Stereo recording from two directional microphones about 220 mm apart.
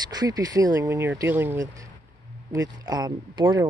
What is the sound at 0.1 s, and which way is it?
Speech, 15° right (ahead or behind).